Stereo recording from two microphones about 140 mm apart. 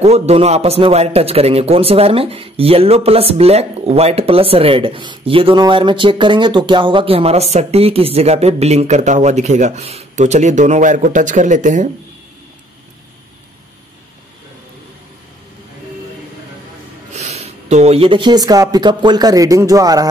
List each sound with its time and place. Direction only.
0.0 s a man's voice: 50° right (ahead or behind)
17.1 s speech: 50° right (ahead or behind); by 20.1 s 25° right (ahead or behind)